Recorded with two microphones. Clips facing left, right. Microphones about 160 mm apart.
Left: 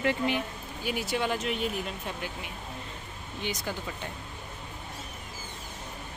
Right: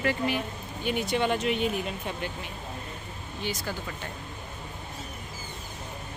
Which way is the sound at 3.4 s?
20° left (ahead or behind).